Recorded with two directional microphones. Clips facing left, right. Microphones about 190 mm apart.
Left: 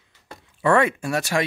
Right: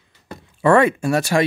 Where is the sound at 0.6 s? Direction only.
35° right (ahead or behind).